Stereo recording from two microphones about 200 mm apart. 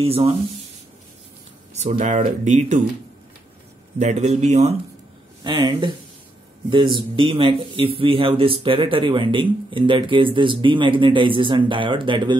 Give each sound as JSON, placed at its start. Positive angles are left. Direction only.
{"t": 0.0, "sound": "speech", "side_deg": -30}
{"t": 1.7, "sound": "speech", "side_deg": -35}
{"t": 4.0, "sound": "speech", "side_deg": -35}
{"t": 5.4, "sound": "speech", "side_deg": -20}